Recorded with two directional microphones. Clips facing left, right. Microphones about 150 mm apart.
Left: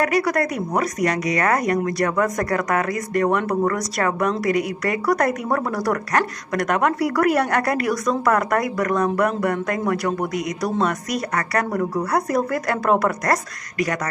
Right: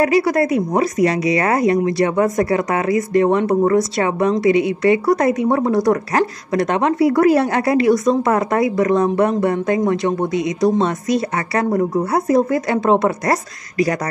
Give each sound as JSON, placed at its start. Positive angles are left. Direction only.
{"t": 0.0, "sound": "a woman's voice", "side_deg": -25}